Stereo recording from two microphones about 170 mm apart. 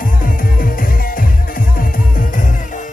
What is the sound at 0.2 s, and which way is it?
Music, 55° left (ahead or behind).